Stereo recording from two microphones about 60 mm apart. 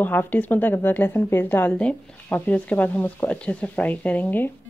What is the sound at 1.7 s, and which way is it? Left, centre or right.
Speech, centre.